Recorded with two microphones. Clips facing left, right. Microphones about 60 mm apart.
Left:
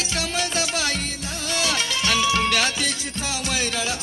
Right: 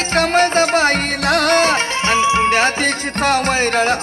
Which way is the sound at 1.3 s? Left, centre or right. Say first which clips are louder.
Right 15 dB; right.